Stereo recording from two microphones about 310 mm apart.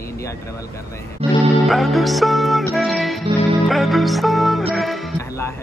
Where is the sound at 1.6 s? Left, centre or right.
Centre.